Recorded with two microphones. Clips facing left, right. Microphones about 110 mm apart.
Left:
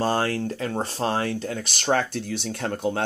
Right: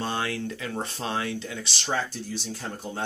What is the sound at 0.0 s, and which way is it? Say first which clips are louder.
Speech: left 6 dB; 40° left (ahead or behind).